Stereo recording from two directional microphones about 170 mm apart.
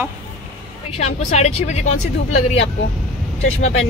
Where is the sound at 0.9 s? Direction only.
40° left (ahead or behind).